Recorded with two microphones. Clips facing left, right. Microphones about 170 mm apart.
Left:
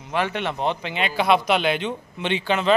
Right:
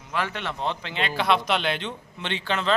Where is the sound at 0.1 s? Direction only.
20° left (ahead or behind).